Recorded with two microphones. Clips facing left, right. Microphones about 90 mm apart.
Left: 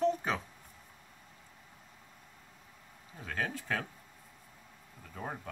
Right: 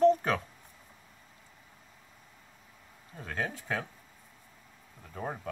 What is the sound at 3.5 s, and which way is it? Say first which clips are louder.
Speech: right 1 dB; 15° right (ahead or behind).